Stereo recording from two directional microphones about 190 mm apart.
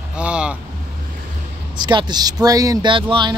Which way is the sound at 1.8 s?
25° right (ahead or behind).